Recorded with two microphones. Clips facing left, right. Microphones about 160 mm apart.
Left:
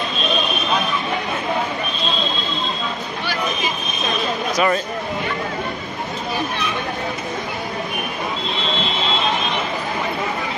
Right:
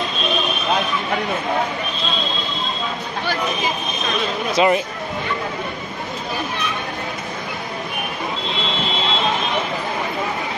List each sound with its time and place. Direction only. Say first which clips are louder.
4.6 s speech: right 3 dB; 20° right (ahead or behind)